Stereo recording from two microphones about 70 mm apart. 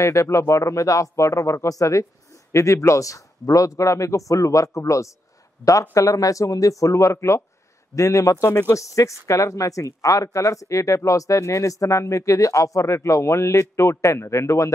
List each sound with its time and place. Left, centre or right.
0.0 s a man's voice: left